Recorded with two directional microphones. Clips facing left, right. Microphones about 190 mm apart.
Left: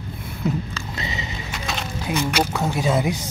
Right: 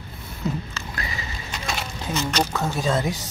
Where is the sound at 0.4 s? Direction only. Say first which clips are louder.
Left 3 dB; 20° left (ahead or behind).